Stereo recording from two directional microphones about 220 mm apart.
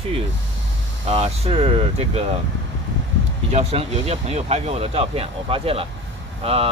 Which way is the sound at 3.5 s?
30° right (ahead or behind).